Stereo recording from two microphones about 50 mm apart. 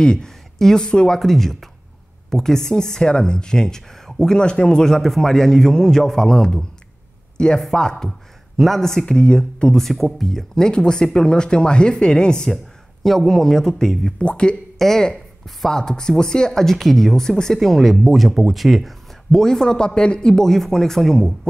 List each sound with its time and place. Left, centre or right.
0.0 s speech: centre
9.0 s speech: centre
14.2 s speech: left
14.8 s speech: centre
19.4 s speech: centre
20.4 s speech: centre